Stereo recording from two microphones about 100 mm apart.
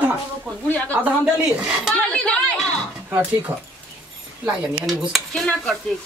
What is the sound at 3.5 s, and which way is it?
Speech, 25° right (ahead or behind).